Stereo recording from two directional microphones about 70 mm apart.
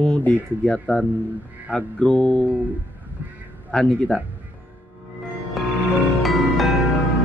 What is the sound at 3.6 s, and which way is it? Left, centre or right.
Speech, centre.